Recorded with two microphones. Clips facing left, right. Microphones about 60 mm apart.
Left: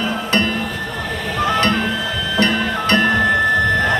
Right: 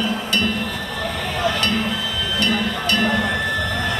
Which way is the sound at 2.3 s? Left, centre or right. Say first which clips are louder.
Left 4 dB; left.